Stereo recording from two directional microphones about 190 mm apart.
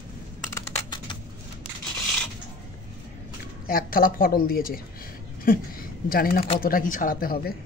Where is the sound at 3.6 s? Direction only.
50° left (ahead or behind).